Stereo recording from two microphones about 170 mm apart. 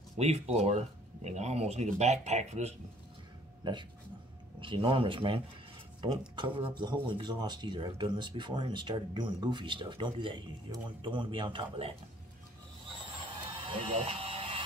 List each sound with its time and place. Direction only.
0.2 s speech: 40° right (ahead or behind)
3.6 s speech: 25° right (ahead or behind)
13.7 s a sound: 30° right (ahead or behind)